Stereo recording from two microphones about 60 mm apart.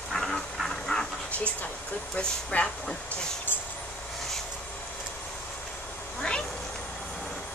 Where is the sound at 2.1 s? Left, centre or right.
Centre.